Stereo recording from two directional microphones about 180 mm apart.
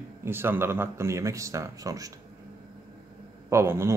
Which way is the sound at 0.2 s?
15° right (ahead or behind).